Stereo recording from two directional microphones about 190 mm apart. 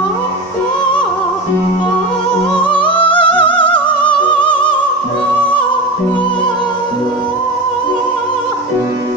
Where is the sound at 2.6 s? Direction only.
25° left (ahead or behind).